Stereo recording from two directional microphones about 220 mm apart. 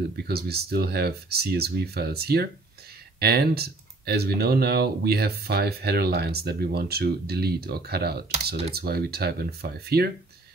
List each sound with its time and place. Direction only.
0.3 s speech: 45° right (ahead or behind)